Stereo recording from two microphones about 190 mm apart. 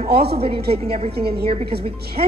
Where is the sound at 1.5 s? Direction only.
30° right (ahead or behind).